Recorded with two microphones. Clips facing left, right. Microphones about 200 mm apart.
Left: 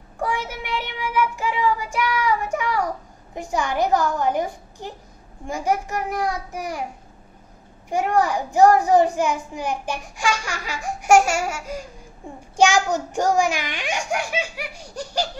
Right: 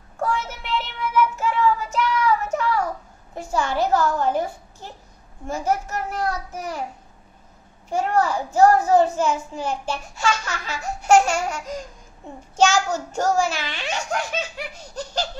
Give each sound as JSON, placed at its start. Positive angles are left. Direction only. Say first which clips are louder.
{"t": 0.2, "sound": "child singing", "louder": "right 1 dB", "side_deg": 10}
{"t": 3.3, "sound": "a child's voice", "louder": "even", "side_deg": 15}
{"t": 7.9, "sound": "a child's voice", "louder": "left 1 dB", "side_deg": 15}